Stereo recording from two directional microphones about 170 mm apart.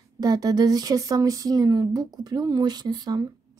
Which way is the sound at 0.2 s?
25° right (ahead or behind).